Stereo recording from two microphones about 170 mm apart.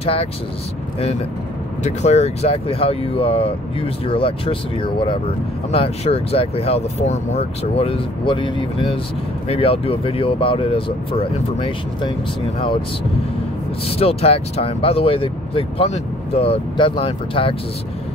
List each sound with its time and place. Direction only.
0.0 s speech: 35° left (ahead or behind)
1.8 s speech: 40° left (ahead or behind)
13.8 s speech: 35° left (ahead or behind)